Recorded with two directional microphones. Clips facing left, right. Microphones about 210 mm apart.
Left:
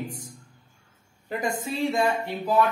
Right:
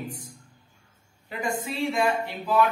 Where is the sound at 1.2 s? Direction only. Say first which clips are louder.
Left 1 dB; 45° left (ahead or behind).